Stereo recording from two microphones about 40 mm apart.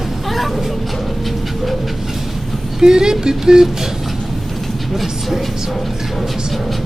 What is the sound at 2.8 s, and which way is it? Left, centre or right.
Speech, centre.